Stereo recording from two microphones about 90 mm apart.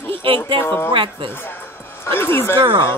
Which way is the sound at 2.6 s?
65° right (ahead or behind).